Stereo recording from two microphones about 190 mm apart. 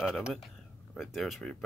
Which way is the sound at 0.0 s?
Centre (ahead or behind).